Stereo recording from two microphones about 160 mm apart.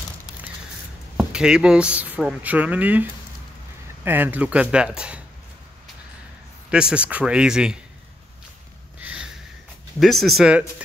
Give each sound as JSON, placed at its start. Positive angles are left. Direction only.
{"t": 1.1, "sound": "speech", "side_deg": -5}
{"t": 6.7, "sound": "speech", "side_deg": -5}
{"t": 9.0, "sound": "a sound", "side_deg": -5}
{"t": 9.9, "sound": "speech", "side_deg": 0}